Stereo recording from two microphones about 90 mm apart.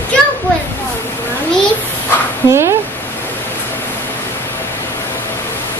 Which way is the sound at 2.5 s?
30° right (ahead or behind).